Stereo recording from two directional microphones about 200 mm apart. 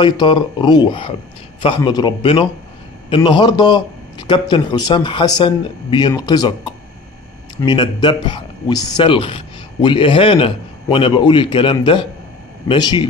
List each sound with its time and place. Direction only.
0.0 s speech: 25° left (ahead or behind)